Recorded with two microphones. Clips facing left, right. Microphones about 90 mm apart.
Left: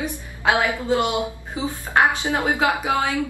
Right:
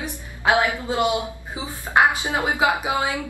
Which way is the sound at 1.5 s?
15° right (ahead or behind).